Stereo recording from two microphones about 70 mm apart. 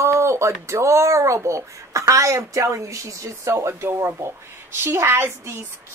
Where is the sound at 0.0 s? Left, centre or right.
Right.